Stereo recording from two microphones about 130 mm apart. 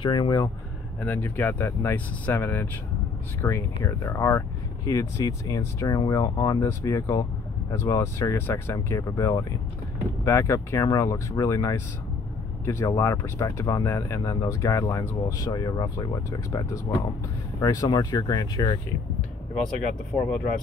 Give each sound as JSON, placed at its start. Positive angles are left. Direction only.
{"t": 0.0, "sound": "speech", "side_deg": 35}
{"t": 1.0, "sound": "speech", "side_deg": 15}
{"t": 20.1, "sound": "speech", "side_deg": 20}